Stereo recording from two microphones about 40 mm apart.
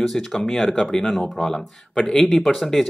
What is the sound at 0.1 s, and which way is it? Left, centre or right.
Speech, centre.